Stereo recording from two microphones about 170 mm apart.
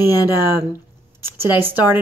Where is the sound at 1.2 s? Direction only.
15° right (ahead or behind).